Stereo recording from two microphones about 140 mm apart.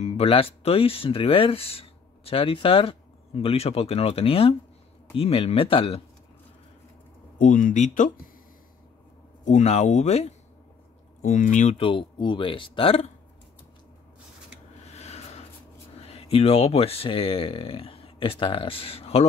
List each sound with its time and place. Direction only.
0.0 s speech: 40° left (ahead or behind)
7.3 s speech: 75° left (ahead or behind)
9.4 s speech: 60° left (ahead or behind)
11.2 s speech: 60° left (ahead or behind)
11.7 s speech: 40° left (ahead or behind)
14.9 s a sound: 50° left (ahead or behind)
16.0 s speech: 45° left (ahead or behind)